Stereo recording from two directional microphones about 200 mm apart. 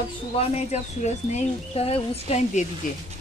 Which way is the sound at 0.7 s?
35° left (ahead or behind).